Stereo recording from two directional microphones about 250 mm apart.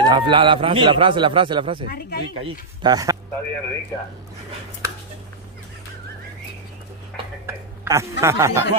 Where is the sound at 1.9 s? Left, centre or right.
Left.